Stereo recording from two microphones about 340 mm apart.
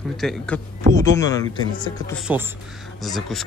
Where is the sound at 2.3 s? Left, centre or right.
Centre.